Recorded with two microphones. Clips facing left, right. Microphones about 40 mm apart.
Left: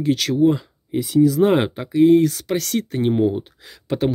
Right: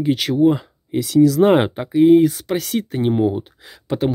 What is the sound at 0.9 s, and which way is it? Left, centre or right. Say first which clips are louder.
Speech: right 2 dB; right.